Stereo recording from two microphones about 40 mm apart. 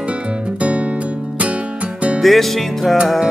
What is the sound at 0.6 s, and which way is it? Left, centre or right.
Music, right.